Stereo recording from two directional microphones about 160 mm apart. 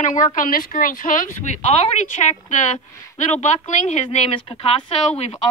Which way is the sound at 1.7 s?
40° left (ahead or behind).